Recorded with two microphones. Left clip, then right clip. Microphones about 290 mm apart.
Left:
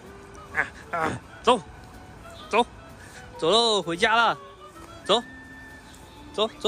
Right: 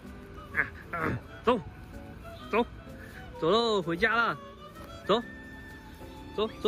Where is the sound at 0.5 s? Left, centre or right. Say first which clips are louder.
Left 4 dB; centre.